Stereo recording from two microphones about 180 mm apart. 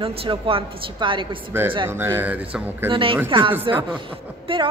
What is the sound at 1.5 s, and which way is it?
Speech, 10° right (ahead or behind).